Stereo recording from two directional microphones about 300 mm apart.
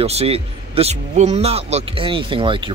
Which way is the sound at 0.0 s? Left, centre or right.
Centre.